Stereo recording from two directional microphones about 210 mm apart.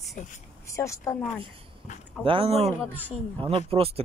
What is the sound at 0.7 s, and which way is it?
Speech, 15° left (ahead or behind).